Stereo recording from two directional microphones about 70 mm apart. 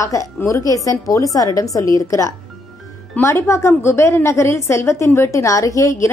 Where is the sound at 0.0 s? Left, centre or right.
Left.